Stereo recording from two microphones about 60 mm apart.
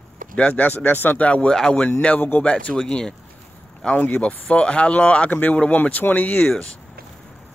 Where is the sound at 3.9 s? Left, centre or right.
Left.